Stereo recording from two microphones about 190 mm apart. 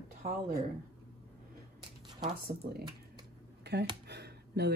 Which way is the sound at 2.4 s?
55° right (ahead or behind).